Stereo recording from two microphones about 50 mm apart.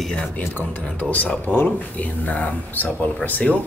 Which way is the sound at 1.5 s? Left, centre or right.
Left.